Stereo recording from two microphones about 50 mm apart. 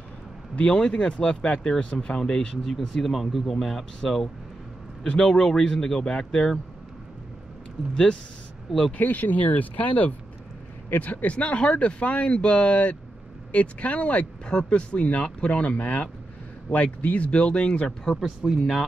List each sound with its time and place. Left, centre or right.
0.6 s speech: centre
5.0 s speech: left
7.9 s speech: centre
8.9 s speech: left; by 18.1 s centre
18.2 s speech: centre
18.6 s speech: centre